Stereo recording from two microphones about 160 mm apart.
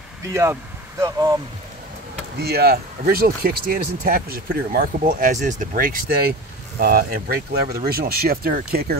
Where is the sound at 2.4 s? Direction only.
80° right.